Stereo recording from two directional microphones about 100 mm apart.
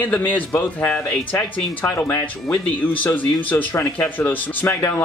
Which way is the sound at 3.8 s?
25° left (ahead or behind).